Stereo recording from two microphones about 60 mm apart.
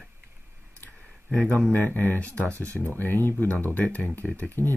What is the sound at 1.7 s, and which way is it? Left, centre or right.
Speech, left.